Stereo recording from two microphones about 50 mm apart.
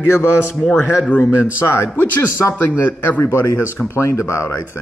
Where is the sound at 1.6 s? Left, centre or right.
Left.